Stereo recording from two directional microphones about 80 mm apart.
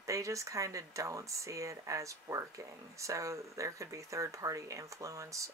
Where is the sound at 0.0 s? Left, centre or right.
Right.